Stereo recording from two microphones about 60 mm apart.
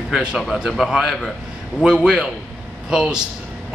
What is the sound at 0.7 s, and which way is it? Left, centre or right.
Speech, centre.